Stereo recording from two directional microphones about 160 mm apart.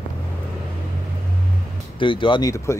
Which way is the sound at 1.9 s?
30° left (ahead or behind).